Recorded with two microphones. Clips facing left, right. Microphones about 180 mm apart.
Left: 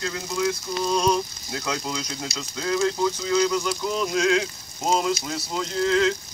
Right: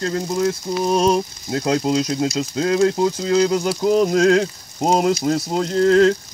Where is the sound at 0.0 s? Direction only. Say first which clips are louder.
Right 6 dB; 40° right (ahead or behind).